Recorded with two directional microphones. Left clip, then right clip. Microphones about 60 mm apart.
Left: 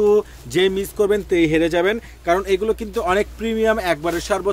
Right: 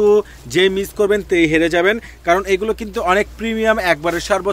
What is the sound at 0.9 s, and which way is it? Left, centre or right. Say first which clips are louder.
Speech: right 2 dB; left.